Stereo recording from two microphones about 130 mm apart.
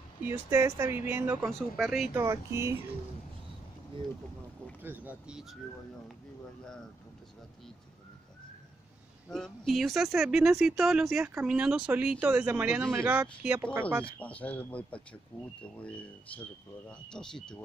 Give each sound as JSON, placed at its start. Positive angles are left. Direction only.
{"t": 0.2, "sound": "speech", "side_deg": -20}
{"t": 1.4, "sound": "speech", "side_deg": -5}
{"t": 2.1, "sound": "speech", "side_deg": -20}
{"t": 4.8, "sound": "speech", "side_deg": -15}
{"t": 9.3, "sound": "speech", "side_deg": 0}
{"t": 13.2, "sound": "speech", "side_deg": -10}
{"t": 14.0, "sound": "speech", "side_deg": 10}
{"t": 17.1, "sound": "speech", "side_deg": 5}